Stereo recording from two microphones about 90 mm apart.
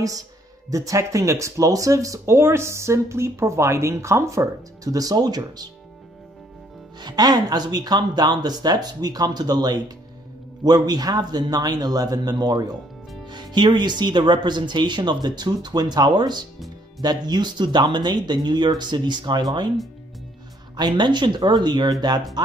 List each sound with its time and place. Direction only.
0.7 s speech: 40° right (ahead or behind)
7.0 s speech: 50° right (ahead or behind)
20.7 s speech: 55° right (ahead or behind)